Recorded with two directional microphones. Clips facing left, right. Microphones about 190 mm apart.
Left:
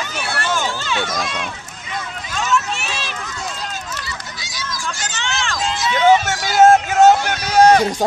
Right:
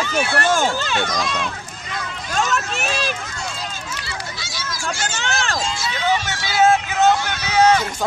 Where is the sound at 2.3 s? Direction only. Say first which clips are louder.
Left 1 dB; 45° right (ahead or behind).